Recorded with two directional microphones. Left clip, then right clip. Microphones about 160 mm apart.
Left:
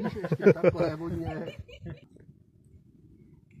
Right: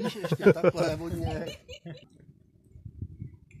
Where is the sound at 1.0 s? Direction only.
65° right (ahead or behind).